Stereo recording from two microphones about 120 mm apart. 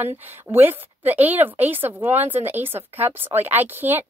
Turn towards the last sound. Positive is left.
turn(degrees=-15)  # may be behind; listen again after turning